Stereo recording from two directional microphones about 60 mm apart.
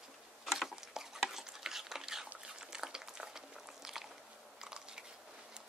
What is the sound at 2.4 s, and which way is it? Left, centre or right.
Boiling, centre.